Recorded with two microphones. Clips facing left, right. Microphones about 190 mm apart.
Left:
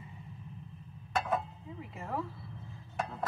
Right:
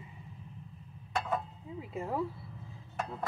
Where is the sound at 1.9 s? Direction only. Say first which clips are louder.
Right 5 dB; 15° right (ahead or behind).